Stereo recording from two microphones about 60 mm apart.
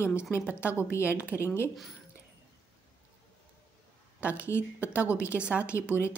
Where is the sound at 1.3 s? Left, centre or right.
Left.